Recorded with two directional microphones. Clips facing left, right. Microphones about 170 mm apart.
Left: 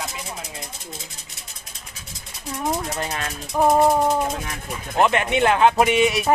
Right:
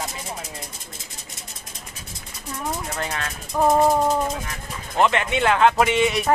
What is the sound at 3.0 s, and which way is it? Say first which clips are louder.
Speech: left 1 dB; 15° left (ahead or behind).